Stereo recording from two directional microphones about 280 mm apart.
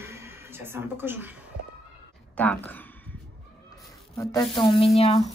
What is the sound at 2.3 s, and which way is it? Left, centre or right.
Speech, centre.